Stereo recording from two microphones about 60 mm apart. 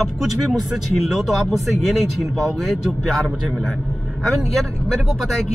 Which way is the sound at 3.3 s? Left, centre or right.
Centre.